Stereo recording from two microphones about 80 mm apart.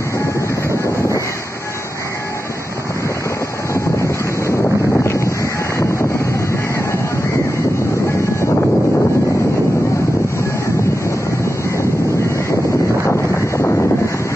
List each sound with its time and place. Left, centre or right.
0.2 s train: left
3.7 s wind noise: left
4.9 s a sound: left
8.1 s vehicle: left
11.1 s vehicle: left
13.0 s wind noise: left